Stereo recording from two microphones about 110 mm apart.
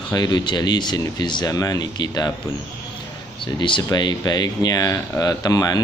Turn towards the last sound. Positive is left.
turn(degrees=35)  # may be behind; listen again after turning